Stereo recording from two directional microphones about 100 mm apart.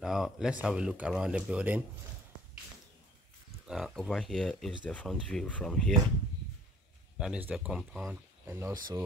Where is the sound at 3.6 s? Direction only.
Centre (ahead or behind).